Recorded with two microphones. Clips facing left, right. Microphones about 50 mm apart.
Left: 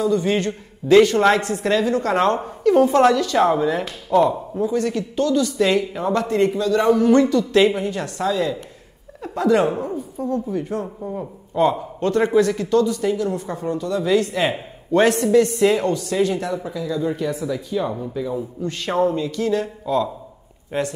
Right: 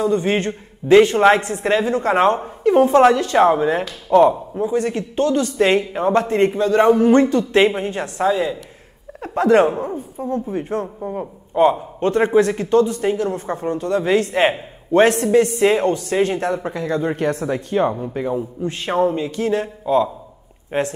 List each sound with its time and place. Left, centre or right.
0.0 s a man's voice: right
9.2 s a woman's voice: right
18.6 s a man's voice: right